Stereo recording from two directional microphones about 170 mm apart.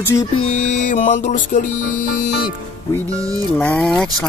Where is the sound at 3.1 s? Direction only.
20° right (ahead or behind).